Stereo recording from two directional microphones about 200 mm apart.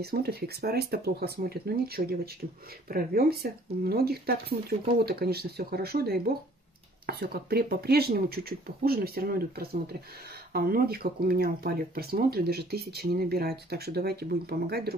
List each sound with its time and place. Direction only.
0.0 s speech: 50° right (ahead or behind)